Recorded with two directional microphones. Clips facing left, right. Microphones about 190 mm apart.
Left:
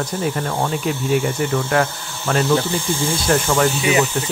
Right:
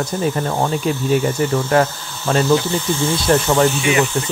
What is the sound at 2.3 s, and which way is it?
Speech, 25° right (ahead or behind).